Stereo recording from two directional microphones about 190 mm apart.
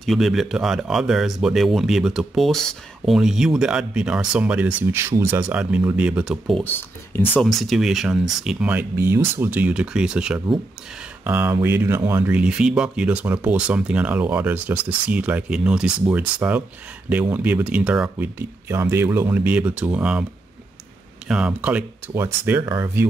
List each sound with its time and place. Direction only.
0.0 s speech: centre (ahead or behind)
21.3 s speech: 5° right (ahead or behind); by 23.0 s 20° right (ahead or behind)